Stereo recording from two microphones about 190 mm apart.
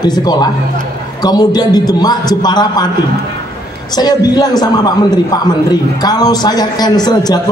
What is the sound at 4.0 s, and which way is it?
A man's voice, 20° left (ahead or behind).